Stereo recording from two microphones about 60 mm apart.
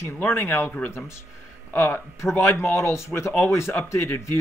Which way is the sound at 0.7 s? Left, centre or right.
Left.